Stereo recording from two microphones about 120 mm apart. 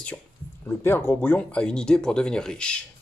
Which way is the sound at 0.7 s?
20° left (ahead or behind).